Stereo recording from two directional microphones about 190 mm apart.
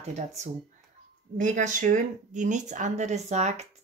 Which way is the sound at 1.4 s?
40° right (ahead or behind).